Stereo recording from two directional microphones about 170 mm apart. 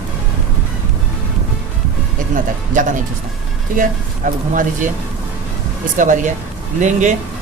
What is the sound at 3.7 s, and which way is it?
Speech, 50° right (ahead or behind).